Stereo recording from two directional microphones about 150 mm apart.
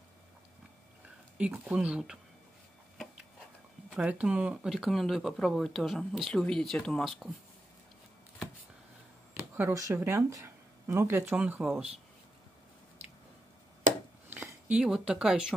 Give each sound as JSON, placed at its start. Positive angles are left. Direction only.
{"t": 1.4, "sound": "speech", "side_deg": -10}
{"t": 3.9, "sound": "speech", "side_deg": -10}
{"t": 9.3, "sound": "a sound", "side_deg": -15}
{"t": 10.0, "sound": "speech", "side_deg": -15}
{"t": 14.3, "sound": "speech", "side_deg": -10}